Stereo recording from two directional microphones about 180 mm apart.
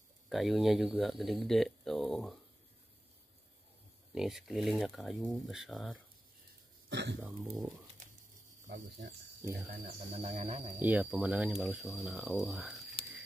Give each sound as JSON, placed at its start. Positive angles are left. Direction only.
{"t": 0.3, "sound": "speech", "side_deg": 0}
{"t": 4.1, "sound": "speech", "side_deg": 0}
{"t": 6.9, "sound": "speech", "side_deg": -70}
{"t": 7.2, "sound": "speech", "side_deg": 0}
{"t": 8.6, "sound": "speech", "side_deg": -45}
{"t": 9.4, "sound": "speech", "side_deg": -15}
{"t": 9.8, "sound": "speech", "side_deg": -35}
{"t": 10.8, "sound": "speech", "side_deg": -10}